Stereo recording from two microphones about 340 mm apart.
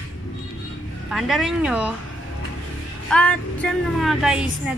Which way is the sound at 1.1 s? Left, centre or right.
Centre.